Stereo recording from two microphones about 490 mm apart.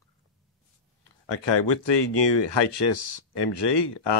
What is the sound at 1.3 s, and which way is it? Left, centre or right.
Speech, left.